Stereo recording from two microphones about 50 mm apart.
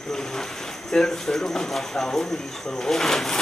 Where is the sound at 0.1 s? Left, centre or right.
Centre.